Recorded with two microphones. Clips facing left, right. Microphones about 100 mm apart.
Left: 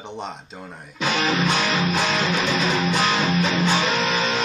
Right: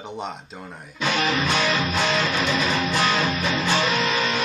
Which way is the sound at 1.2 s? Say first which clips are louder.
Left 1 dB; 20° left (ahead or behind).